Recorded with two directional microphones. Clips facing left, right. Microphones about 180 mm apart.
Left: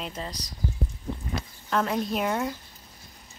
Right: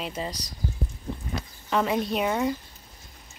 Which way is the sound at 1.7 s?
Centre (ahead or behind).